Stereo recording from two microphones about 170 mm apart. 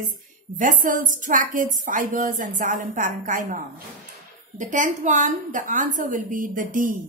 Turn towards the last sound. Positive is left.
turn(degrees=-50)  # may be behind; listen again after turning